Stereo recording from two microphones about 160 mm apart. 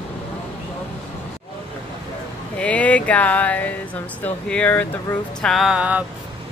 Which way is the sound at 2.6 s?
10° left (ahead or behind).